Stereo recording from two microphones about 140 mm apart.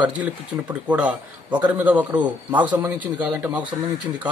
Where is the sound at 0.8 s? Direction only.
10° right (ahead or behind).